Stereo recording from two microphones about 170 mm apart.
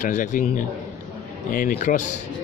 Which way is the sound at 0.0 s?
50° left (ahead or behind).